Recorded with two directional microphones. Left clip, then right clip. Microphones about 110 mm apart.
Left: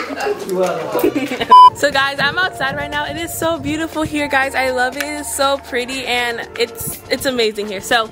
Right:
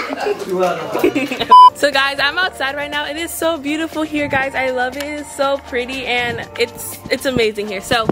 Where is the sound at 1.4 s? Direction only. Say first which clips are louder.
Even; 5° left (ahead or behind).